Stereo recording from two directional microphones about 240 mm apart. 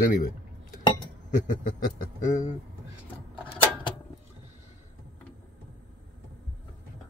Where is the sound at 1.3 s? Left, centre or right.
Left.